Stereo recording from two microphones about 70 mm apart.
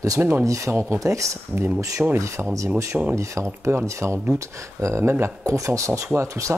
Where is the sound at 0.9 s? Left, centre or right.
Right.